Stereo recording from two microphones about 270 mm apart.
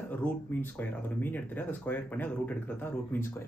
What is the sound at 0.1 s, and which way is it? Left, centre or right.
Speech, centre.